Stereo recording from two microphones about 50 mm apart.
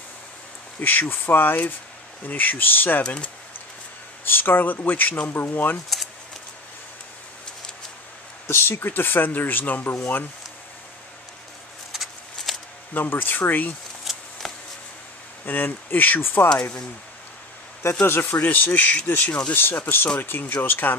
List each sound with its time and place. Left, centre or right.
0.7 s speech: left
3.0 s speech: left
4.2 s speech: left
8.5 s speech: left
11.9 s shuffling cards: centre
12.9 s speech: left
14.1 s a sound: centre
15.4 s speech: left
18.0 s speech: left
18.4 s speech: left